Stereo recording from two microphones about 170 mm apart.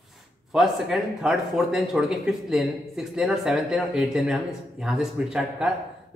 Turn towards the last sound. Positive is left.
turn(degrees=-5)  # may be behind; listen again after turning